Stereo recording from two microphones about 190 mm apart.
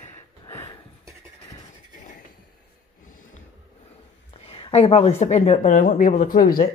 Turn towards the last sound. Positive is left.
turn(degrees=50)  # may be behind; listen again after turning